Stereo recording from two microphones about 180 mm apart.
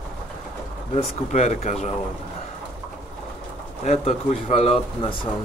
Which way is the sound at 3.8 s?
35° left (ahead or behind).